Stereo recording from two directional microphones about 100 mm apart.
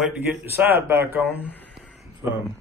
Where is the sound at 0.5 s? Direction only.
25° right (ahead or behind).